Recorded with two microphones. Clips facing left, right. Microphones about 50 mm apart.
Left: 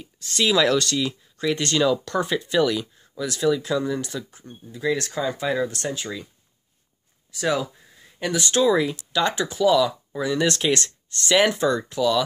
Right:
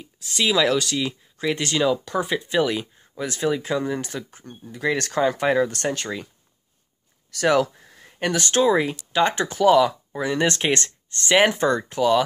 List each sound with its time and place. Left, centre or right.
0.0 s speech: centre; by 6.2 s right
7.2 s speech: right
7.6 s a sound: right
8.4 s speech: right